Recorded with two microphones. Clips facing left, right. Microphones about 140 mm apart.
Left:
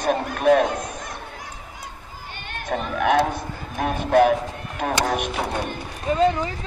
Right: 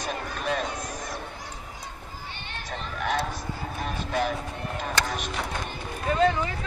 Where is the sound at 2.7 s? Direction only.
55° left (ahead or behind).